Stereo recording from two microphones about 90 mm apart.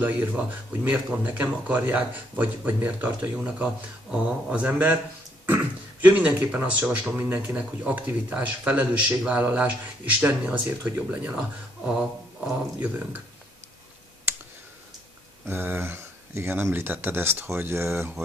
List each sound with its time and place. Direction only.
0.0 s speech: 20° right (ahead or behind)
15.4 s speech: 25° right (ahead or behind)